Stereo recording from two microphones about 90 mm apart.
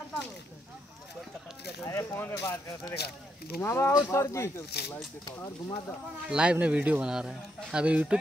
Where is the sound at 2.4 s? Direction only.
35° left (ahead or behind).